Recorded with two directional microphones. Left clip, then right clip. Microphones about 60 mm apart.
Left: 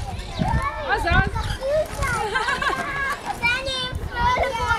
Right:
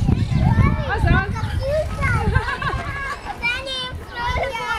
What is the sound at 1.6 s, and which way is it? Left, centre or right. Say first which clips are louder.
Children playing: even; right.